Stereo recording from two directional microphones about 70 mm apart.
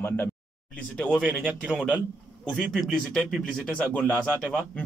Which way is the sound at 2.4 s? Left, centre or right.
Centre.